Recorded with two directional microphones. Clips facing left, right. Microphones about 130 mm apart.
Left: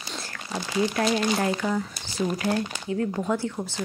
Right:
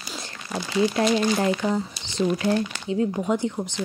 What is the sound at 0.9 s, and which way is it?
Speech, 25° right (ahead or behind).